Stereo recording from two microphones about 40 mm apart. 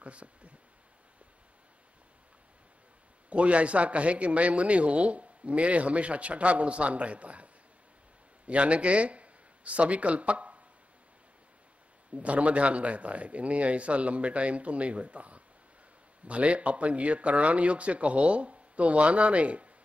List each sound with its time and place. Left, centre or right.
0.0 s a man's voice: right
3.3 s a man's voice: right
12.2 s a man's voice: right